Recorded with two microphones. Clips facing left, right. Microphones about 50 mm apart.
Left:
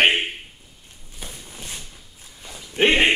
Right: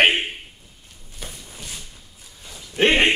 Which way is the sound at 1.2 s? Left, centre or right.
Centre.